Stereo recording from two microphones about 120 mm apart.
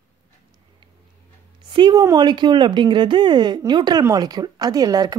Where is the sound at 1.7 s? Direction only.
40° right (ahead or behind).